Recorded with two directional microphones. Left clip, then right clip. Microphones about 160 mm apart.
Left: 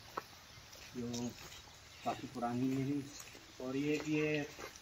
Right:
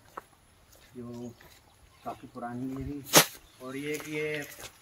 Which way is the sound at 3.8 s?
Centre (ahead or behind).